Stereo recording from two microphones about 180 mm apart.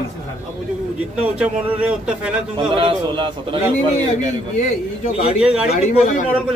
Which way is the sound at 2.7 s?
30° right (ahead or behind).